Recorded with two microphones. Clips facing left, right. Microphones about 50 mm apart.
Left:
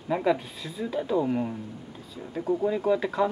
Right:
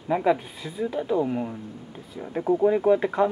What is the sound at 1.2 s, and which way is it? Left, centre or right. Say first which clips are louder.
Speech: even; centre.